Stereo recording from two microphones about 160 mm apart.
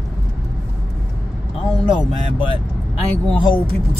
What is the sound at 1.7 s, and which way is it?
Speech, centre (ahead or behind).